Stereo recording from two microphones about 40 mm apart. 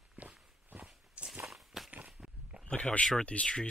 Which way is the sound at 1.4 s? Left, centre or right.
Centre.